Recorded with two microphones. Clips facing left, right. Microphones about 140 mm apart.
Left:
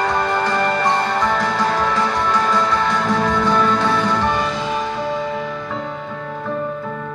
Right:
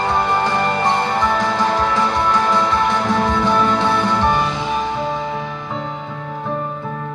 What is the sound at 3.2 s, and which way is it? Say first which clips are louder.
Music: even; 15° right (ahead or behind).